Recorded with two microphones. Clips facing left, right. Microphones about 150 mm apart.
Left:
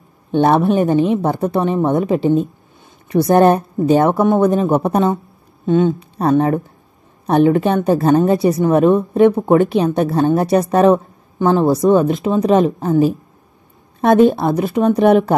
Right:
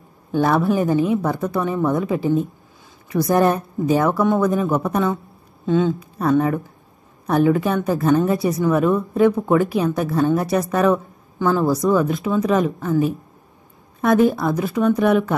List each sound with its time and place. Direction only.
0.3 s a woman's voice: 25° left (ahead or behind)